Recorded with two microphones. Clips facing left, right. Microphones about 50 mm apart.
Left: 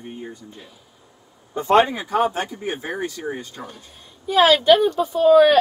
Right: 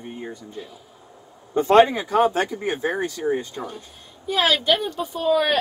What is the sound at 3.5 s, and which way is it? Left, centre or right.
A woman's voice, centre.